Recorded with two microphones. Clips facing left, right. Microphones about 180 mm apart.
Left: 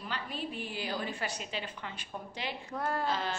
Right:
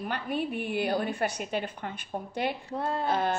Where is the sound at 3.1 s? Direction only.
55° right (ahead or behind).